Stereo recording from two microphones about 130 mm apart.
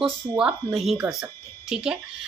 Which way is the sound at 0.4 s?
10° right (ahead or behind).